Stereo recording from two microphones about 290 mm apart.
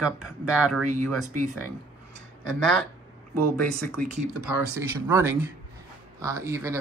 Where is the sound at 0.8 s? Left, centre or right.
Right.